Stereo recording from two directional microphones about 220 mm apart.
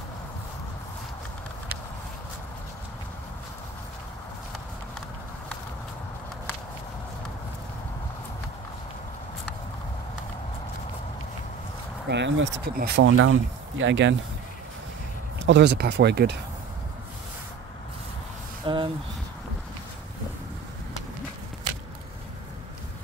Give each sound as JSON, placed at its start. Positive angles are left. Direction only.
{"t": 12.1, "sound": "speech", "side_deg": -55}
{"t": 15.4, "sound": "speech", "side_deg": -50}
{"t": 18.6, "sound": "a sound", "side_deg": -25}